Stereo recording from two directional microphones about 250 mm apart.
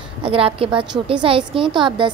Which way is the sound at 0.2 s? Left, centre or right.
Right.